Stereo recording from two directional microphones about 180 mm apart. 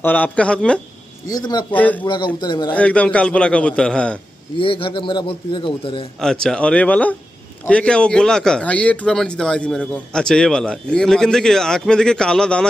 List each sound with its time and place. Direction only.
0.0 s a man's voice: 10° left (ahead or behind)
1.2 s speech: 20° left (ahead or behind)
1.7 s a man's voice: 10° left (ahead or behind)
2.4 s speech: 25° left (ahead or behind)
2.7 s a man's voice: 5° left (ahead or behind)
4.6 s speech: 30° left (ahead or behind)
6.2 s a man's voice: 5° left (ahead or behind)